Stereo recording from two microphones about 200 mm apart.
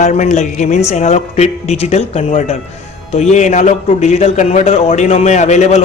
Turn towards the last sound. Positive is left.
turn(degrees=35)  # may be behind; listen again after turning